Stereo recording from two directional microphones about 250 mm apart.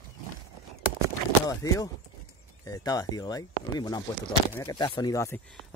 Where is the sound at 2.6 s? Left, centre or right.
Centre.